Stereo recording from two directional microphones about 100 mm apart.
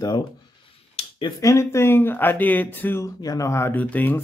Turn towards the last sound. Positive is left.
turn(degrees=15)  # may be behind; listen again after turning